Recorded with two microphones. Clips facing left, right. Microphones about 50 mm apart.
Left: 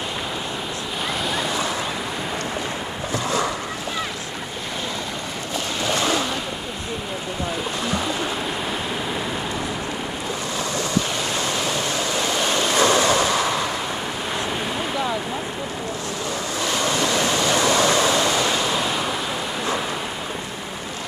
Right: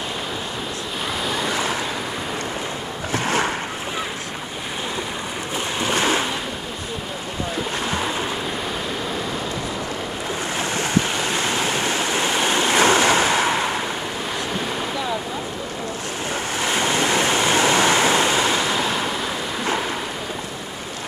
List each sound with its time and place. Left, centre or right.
3.1 s boat: right
5.8 s ocean: right
10.6 s waves: right
16.5 s waves: right